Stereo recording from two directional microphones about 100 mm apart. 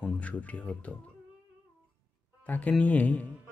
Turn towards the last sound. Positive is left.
turn(degrees=15)  # may be behind; listen again after turning